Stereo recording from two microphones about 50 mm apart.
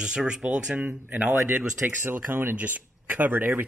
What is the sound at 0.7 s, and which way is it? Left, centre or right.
Speech, right.